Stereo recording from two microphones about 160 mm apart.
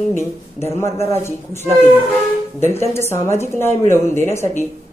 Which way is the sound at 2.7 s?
15° left (ahead or behind).